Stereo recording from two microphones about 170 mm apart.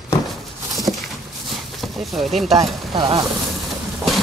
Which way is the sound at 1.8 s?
Centre (ahead or behind).